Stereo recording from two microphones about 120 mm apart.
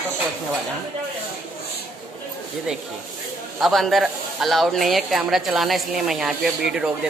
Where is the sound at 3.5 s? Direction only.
Centre (ahead or behind).